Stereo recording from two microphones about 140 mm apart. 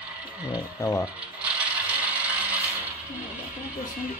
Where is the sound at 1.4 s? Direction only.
10° right (ahead or behind).